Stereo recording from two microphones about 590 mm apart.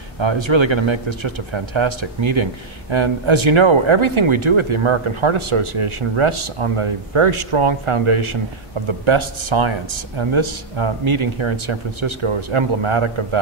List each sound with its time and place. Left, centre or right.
0.2 s speech: right